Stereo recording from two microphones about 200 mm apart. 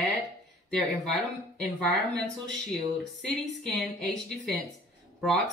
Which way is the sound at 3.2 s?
5° left (ahead or behind).